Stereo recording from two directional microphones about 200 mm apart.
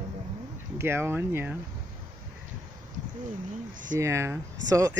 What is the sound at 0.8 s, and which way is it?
Speech, 10° right (ahead or behind).